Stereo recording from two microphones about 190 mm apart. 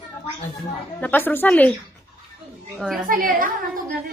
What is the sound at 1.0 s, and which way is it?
Speech, 10° left (ahead or behind).